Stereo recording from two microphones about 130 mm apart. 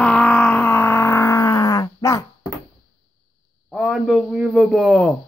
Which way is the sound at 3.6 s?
Centre (ahead or behind).